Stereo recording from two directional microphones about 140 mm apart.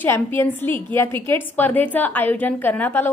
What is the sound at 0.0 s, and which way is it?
A woman's voice, 15° left (ahead or behind).